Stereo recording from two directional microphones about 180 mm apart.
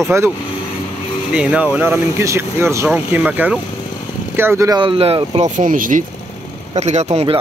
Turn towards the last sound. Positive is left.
turn(degrees=-35)  # may be behind; listen again after turning